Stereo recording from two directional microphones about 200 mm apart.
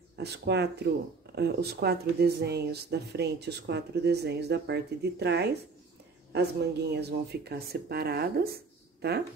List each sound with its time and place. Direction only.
0.1 s speech: 55° right (ahead or behind)